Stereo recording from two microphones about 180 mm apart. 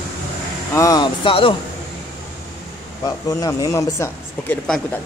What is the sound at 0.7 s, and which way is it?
Speech, 20° left (ahead or behind).